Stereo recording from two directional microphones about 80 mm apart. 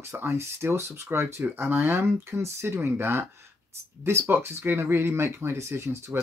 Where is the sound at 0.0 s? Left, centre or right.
Right.